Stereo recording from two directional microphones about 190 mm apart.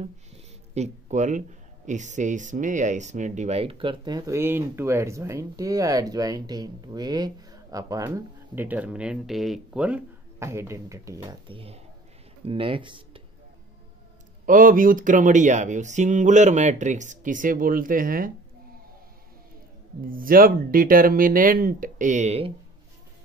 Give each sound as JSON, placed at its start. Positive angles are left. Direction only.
{"t": 0.7, "sound": "speech", "side_deg": -35}
{"t": 11.4, "sound": "speech", "side_deg": -30}
{"t": 14.4, "sound": "speech", "side_deg": -45}
{"t": 20.1, "sound": "speech", "side_deg": -50}